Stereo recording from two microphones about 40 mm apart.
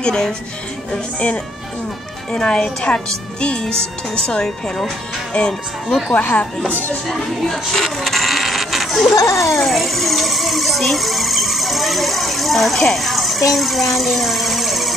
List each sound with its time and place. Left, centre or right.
0.0 s a woman's voice: centre
2.3 s a woman's voice: left
5.4 s speech: left
8.0 s a sound: centre